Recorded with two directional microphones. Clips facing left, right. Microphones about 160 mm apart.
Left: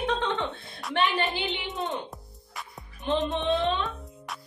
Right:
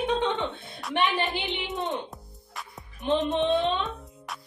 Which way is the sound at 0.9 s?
15° right (ahead or behind).